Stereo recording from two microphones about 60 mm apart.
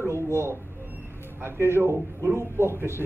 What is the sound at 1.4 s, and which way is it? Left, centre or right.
Speech, right.